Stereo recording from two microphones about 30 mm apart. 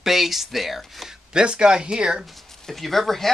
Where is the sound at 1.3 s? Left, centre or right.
Right.